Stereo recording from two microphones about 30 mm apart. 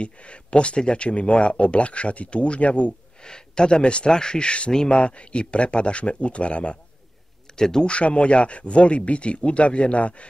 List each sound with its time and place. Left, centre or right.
0.0 s speech: left
3.3 s speech: left
4.1 s speech: left
7.5 s speech: centre
7.8 s speech: left